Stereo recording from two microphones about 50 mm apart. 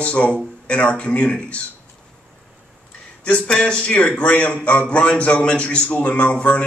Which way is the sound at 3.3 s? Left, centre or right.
Left.